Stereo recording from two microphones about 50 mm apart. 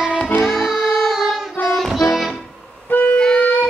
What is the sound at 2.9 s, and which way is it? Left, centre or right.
Music, left.